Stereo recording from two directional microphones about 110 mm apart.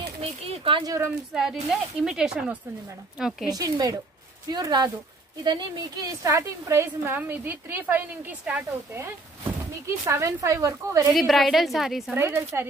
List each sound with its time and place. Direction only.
0.2 s a sound: 60° right (ahead or behind)
0.8 s a woman's voice: 25° right (ahead or behind)
1.3 s a woman's voice: centre (ahead or behind)
3.5 s speech: 35° right (ahead or behind)
6.2 s a woman's voice: 25° right (ahead or behind)
9.8 s a woman's voice: 25° right (ahead or behind)
11.1 s a woman's voice: centre (ahead or behind)
12.1 s a woman's voice: 20° right (ahead or behind)